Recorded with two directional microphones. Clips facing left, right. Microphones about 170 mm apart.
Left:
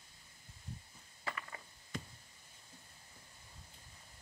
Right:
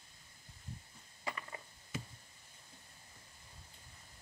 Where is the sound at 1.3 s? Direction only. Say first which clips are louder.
Right 1 dB; 20° right (ahead or behind).